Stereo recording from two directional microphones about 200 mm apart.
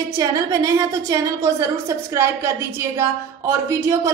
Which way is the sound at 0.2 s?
15° right (ahead or behind).